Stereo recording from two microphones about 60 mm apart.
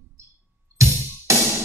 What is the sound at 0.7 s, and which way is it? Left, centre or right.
Music, right.